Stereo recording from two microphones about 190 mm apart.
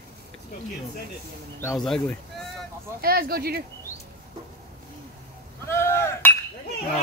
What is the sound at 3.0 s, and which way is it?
Speech, 55° right (ahead or behind).